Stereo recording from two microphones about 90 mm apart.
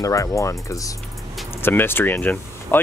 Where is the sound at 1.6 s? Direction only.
25° left (ahead or behind).